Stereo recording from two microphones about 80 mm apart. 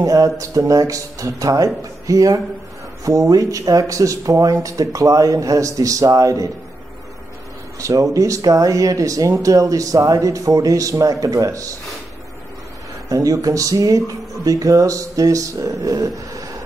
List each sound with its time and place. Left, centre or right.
0.0 s speech: right
7.8 s speech: right
13.1 s speech: right